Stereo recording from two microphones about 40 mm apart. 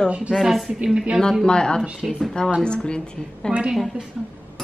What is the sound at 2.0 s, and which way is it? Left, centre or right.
Speech, centre.